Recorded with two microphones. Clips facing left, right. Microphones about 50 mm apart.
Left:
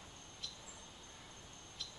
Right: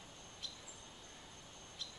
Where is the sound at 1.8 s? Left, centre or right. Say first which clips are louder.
Even; left.